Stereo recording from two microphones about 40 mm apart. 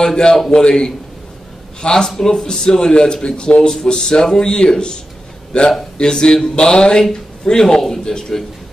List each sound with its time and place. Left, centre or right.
0.0 s a man's voice: centre